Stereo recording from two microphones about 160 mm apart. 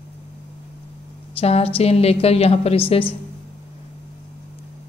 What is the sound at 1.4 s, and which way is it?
A woman's voice, 40° left (ahead or behind).